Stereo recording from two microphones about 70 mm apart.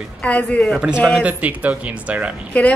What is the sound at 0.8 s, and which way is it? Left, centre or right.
Speech, centre.